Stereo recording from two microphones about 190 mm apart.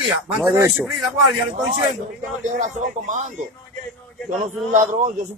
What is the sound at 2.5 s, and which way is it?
Speech, 40° right (ahead or behind).